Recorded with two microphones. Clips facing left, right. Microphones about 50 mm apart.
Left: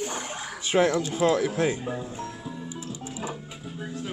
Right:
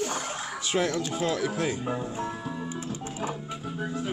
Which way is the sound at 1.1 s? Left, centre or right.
Left.